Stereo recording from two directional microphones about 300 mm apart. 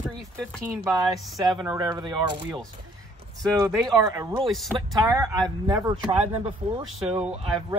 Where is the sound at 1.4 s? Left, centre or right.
Centre.